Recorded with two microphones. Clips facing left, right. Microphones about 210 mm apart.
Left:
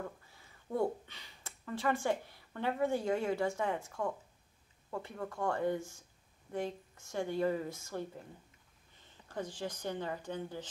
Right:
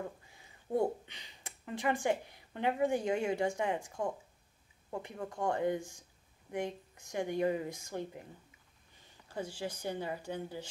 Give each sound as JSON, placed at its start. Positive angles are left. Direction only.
{"t": 0.0, "sound": "a sound", "side_deg": -15}
{"t": 0.7, "sound": "a woman's voice", "side_deg": -20}
{"t": 9.3, "sound": "a woman's voice", "side_deg": -10}